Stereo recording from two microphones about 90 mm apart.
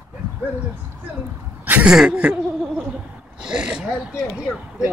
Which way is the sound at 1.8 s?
10° right (ahead or behind).